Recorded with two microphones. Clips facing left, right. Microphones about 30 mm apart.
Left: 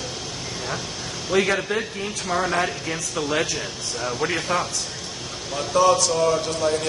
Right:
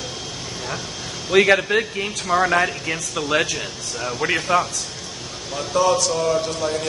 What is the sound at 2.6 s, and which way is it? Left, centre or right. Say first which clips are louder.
A man's voice: right 3 dB; centre.